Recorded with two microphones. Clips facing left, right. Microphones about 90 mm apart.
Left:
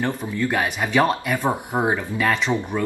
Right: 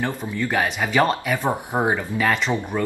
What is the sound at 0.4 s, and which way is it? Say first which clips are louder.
Speech: right 1 dB; centre (ahead or behind).